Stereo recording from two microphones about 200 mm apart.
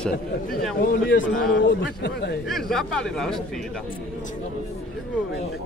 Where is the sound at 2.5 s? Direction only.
Centre (ahead or behind).